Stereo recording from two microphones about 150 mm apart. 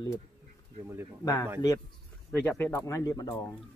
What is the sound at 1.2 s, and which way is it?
Speech, 25° left (ahead or behind).